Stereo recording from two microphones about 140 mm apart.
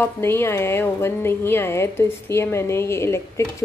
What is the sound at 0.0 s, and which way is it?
Speech, 15° left (ahead or behind).